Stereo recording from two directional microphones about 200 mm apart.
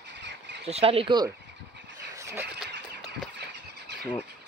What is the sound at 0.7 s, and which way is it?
Speech, 30° right (ahead or behind).